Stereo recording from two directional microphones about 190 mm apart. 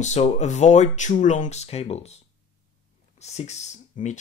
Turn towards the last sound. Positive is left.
turn(degrees=40)  # may be behind; listen again after turning